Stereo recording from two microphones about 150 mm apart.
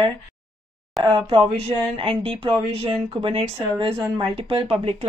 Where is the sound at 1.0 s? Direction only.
30° right (ahead or behind).